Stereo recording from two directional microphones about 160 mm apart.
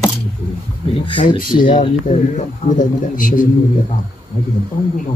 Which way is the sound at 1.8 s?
50° left (ahead or behind).